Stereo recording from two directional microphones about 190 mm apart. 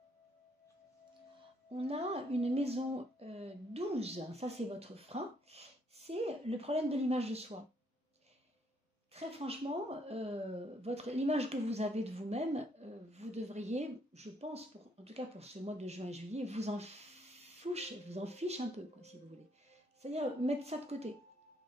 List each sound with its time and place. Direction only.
1.7 s speech: 30° right (ahead or behind)
9.1 s speech: 30° right (ahead or behind)